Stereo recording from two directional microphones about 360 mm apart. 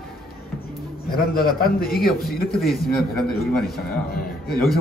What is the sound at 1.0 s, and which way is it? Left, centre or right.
Speech, left.